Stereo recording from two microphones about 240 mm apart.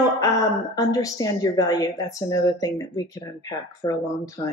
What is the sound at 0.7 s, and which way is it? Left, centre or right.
A woman's voice, centre.